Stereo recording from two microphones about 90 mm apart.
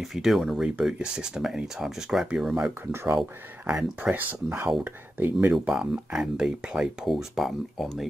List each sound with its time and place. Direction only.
0.0 s speech: centre (ahead or behind)
2.9 s speech: 30° right (ahead or behind)
3.2 s speech: 5° right (ahead or behind)
5.5 s speech: 5° right (ahead or behind)